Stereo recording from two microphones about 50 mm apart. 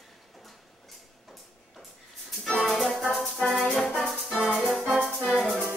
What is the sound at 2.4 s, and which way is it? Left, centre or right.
Music, centre.